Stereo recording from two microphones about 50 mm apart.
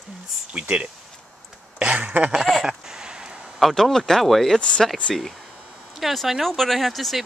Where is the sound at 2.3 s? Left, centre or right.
Centre.